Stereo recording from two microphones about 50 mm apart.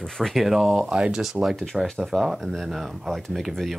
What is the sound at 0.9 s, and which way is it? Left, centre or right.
Speech, centre.